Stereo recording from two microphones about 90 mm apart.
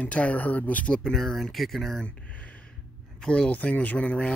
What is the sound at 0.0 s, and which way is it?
Speech, 15° left (ahead or behind).